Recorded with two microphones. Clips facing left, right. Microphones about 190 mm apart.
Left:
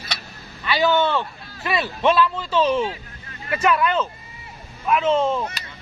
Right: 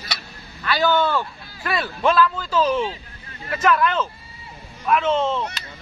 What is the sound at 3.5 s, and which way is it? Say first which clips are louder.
Speech: even; 5° left (ahead or behind).